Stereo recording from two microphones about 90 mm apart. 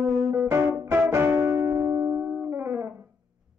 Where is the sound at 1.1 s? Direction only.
25° right (ahead or behind).